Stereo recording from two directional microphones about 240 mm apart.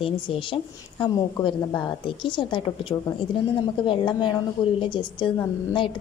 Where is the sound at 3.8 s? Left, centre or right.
Centre.